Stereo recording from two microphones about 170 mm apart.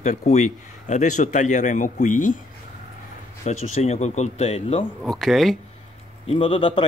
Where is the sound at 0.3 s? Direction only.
45° left (ahead or behind).